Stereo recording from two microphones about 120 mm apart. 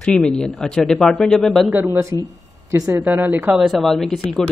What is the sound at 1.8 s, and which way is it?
Speech, 20° right (ahead or behind).